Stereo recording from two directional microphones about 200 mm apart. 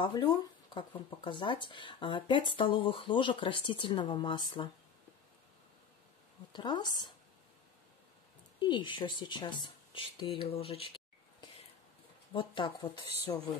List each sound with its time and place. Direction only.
0.0 s speech: 25° left (ahead or behind)
6.5 s speech: 20° left (ahead or behind)
8.5 s speech: 20° left (ahead or behind)
12.3 s speech: 25° left (ahead or behind)